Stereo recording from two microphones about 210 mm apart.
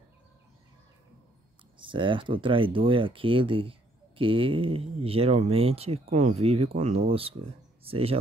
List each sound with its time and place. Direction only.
1.8 s speech: 25° right (ahead or behind)